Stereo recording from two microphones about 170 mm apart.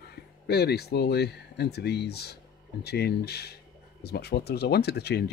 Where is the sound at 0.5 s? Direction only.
75° left (ahead or behind).